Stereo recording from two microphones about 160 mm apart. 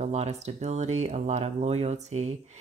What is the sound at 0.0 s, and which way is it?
Speech, 45° right (ahead or behind).